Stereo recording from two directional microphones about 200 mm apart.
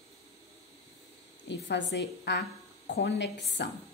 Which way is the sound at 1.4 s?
60° left (ahead or behind).